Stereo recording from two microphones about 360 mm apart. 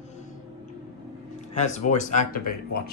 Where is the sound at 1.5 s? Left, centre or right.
Centre.